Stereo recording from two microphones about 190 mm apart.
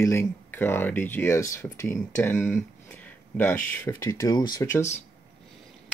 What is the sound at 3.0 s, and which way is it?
Speech, 10° left (ahead or behind).